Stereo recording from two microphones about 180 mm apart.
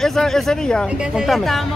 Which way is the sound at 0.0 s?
Centre (ahead or behind).